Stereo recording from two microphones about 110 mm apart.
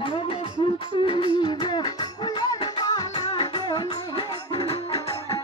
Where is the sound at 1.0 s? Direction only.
50° left (ahead or behind).